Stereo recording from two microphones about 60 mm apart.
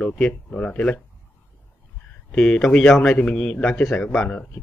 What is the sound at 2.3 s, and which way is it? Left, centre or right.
Speech, centre.